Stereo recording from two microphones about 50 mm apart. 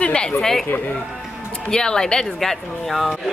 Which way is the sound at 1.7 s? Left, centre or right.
Centre.